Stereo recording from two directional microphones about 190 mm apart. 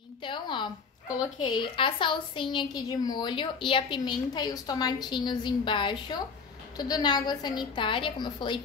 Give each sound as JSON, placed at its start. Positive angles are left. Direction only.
{"t": 0.2, "sound": "speech", "side_deg": 25}